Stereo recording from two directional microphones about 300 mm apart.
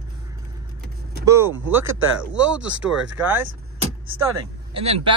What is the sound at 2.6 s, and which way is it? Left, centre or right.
Speech, right.